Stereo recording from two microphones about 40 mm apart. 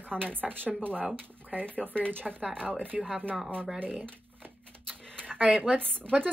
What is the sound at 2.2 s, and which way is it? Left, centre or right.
Speech, centre.